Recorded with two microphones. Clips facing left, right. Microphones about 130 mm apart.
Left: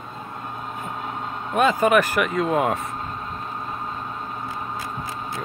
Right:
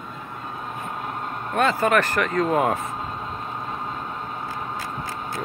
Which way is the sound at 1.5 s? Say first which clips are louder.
Left 2 dB; 15° left (ahead or behind).